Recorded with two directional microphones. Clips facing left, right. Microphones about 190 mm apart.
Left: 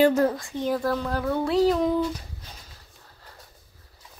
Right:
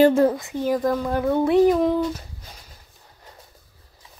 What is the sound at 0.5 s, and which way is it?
Speech, 10° right (ahead or behind).